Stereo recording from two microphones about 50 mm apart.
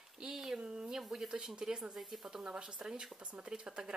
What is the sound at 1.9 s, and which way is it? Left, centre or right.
A woman's voice, centre.